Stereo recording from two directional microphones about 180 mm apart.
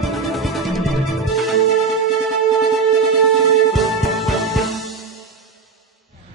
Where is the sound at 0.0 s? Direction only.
Centre (ahead or behind).